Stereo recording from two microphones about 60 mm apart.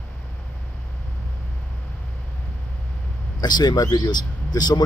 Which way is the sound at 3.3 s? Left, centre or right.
Left.